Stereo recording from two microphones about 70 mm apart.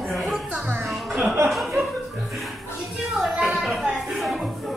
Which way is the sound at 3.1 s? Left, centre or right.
Centre.